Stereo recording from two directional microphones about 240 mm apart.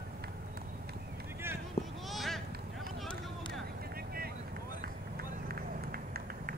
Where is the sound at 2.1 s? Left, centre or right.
Centre.